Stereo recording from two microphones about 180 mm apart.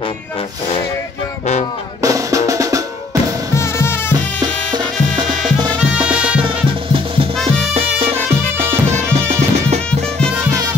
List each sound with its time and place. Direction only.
2.0 s drum: 20° right (ahead or behind)
3.5 s music: 15° left (ahead or behind)
6.0 s music: 5° right (ahead or behind)
7.7 s music: 35° right (ahead or behind)